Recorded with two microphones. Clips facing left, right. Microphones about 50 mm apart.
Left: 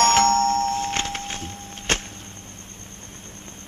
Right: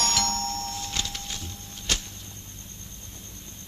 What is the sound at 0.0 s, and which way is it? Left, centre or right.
Music, left.